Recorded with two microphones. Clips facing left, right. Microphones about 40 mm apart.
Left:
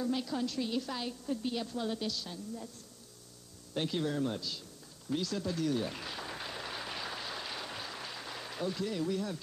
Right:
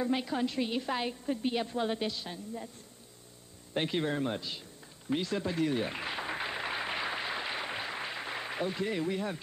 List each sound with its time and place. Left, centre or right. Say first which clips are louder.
0.0 s a woman's voice: right 3 dB; right
3.7 s a woman's voice: right 2 dB; right
5.1 s a sound: right 3 dB; right